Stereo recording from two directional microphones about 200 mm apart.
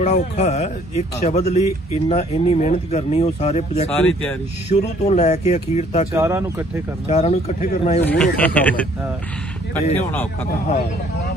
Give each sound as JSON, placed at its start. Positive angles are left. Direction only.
{"t": 0.0, "sound": "speech", "side_deg": 35}
{"t": 3.9, "sound": "speech", "side_deg": 5}
{"t": 4.6, "sound": "speech", "side_deg": 35}
{"t": 6.1, "sound": "speech", "side_deg": -10}
{"t": 7.1, "sound": "speech", "side_deg": 35}
{"t": 8.0, "sound": "speech", "side_deg": 10}
{"t": 9.8, "sound": "speech", "side_deg": 35}